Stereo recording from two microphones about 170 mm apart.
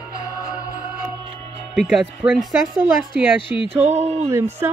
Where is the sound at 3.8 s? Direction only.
40° right (ahead or behind).